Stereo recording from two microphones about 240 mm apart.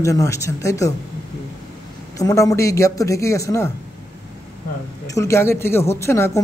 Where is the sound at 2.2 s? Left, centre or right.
Centre.